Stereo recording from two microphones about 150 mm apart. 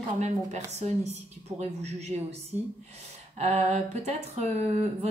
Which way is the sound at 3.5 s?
45° right (ahead or behind).